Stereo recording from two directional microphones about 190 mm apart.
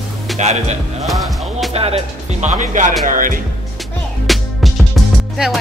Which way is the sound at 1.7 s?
30° right (ahead or behind).